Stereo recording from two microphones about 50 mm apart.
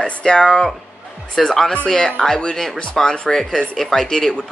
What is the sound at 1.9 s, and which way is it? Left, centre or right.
Speech, centre.